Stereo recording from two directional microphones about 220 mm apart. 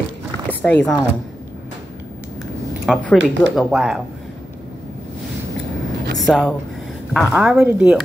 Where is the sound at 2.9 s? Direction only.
5° right (ahead or behind).